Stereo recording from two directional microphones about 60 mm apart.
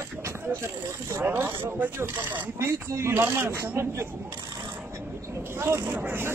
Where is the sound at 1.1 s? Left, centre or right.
Right.